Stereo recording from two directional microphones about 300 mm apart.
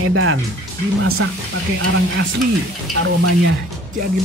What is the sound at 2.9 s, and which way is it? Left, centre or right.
Speech, right.